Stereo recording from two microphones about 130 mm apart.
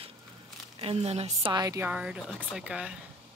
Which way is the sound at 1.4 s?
35° right (ahead or behind).